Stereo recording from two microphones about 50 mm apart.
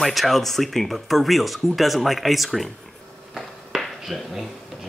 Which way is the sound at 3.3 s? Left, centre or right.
Centre.